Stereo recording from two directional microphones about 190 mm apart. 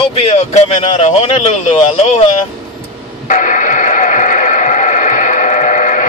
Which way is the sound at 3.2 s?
40° left (ahead or behind).